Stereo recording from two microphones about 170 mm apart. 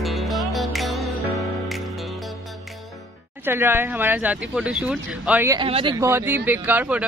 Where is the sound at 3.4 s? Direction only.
15° right (ahead or behind).